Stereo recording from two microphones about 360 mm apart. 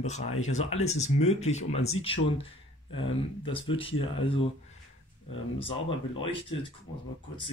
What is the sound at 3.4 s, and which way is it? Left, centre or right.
Speech, centre.